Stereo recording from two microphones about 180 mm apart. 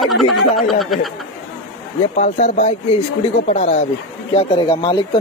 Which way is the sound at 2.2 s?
40° left (ahead or behind).